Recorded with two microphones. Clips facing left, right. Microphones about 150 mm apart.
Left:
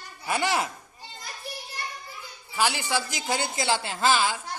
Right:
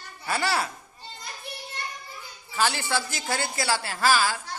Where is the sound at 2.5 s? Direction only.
15° left (ahead or behind).